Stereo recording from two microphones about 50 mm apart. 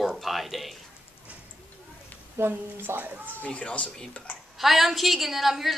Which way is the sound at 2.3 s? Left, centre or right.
Right.